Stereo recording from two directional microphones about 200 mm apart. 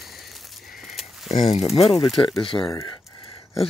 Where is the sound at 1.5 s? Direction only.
30° left (ahead or behind).